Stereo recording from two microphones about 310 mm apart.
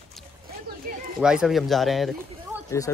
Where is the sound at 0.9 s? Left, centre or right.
Right.